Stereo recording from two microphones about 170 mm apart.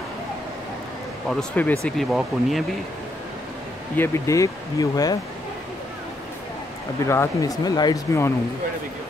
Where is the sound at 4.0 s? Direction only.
20° left (ahead or behind).